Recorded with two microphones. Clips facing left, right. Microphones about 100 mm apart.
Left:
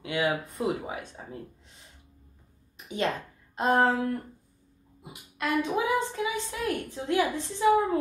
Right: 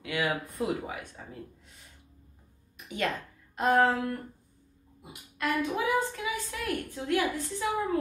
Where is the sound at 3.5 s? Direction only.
20° left (ahead or behind).